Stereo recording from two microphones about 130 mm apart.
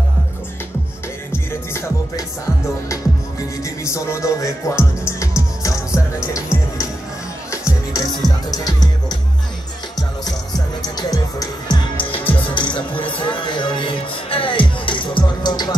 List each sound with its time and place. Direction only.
1.3 s music: 20° left (ahead or behind)
10.8 s music: 30° left (ahead or behind)